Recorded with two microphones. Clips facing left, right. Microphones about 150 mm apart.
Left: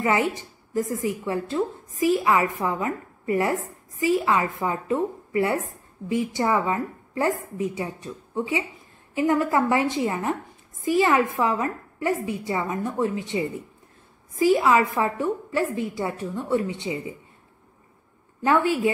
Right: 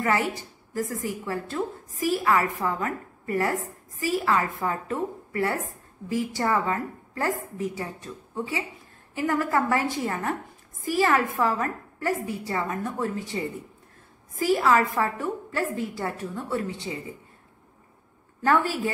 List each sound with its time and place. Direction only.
0.0 s a woman's voice: 20° left (ahead or behind)
18.4 s a woman's voice: 20° left (ahead or behind)